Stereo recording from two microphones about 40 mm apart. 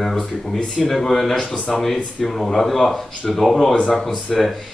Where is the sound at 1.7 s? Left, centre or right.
Centre.